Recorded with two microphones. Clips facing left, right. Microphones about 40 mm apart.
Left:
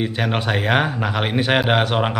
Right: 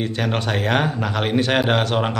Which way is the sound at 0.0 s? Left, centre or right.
Centre.